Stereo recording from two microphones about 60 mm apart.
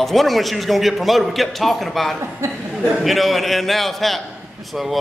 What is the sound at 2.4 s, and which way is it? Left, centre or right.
Speech, right.